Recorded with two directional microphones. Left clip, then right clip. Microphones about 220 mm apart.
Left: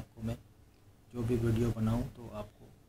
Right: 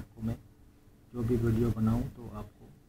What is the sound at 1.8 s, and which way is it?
Speech, 15° left (ahead or behind).